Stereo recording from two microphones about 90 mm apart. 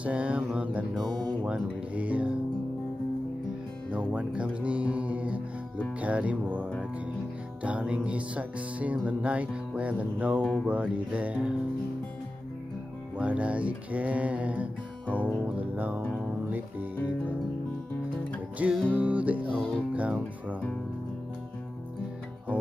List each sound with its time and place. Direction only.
0.0 s music: 15° right (ahead or behind)
0.9 s speech: 5° left (ahead or behind)
1.4 s music: 15° right (ahead or behind)
3.9 s speech: 10° right (ahead or behind)
5.9 s music: 15° right (ahead or behind)
10.4 s speech: 5° left (ahead or behind)
10.7 s music: 15° right (ahead or behind)
13.2 s music: 15° right (ahead or behind)
15.0 s speech: 15° left (ahead or behind)
15.4 s music: 15° right (ahead or behind)
18.6 s music: 15° right (ahead or behind)